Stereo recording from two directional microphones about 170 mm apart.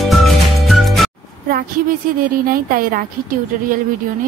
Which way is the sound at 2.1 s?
55° right (ahead or behind).